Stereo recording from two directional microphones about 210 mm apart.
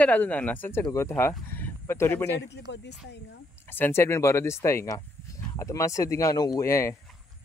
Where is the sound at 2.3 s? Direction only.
55° left (ahead or behind).